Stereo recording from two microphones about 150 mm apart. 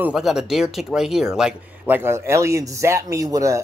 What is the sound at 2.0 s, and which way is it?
Speech, 15° right (ahead or behind).